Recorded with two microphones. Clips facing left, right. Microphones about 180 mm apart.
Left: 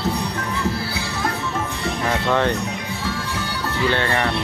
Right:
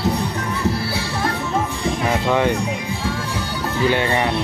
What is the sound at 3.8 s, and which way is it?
Speech, 15° right (ahead or behind).